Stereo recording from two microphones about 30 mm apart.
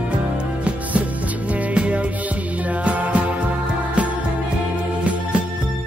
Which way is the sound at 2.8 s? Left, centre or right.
Right.